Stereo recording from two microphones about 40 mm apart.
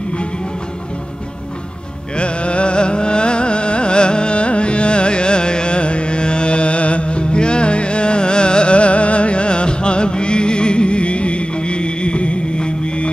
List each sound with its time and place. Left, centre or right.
2.1 s music: left